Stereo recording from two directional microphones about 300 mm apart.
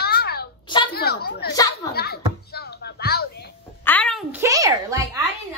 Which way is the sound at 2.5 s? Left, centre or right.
Left.